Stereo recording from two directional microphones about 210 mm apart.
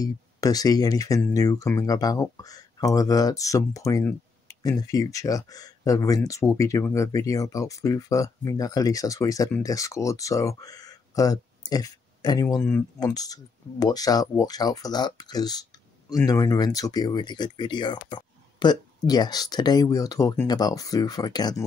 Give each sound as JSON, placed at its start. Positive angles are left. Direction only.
{"t": 0.0, "sound": "speech", "side_deg": 15}